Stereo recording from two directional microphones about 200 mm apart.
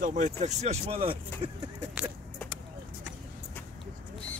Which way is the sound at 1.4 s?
25° right (ahead or behind).